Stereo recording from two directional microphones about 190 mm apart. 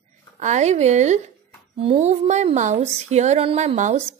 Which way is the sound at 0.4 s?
40° right (ahead or behind).